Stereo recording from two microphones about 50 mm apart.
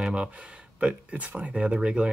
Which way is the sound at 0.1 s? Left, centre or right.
Centre.